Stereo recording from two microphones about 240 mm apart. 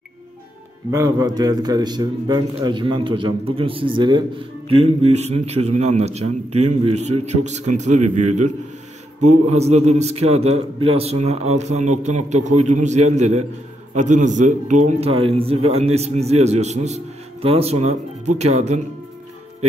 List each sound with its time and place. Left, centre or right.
0.9 s a man's voice: centre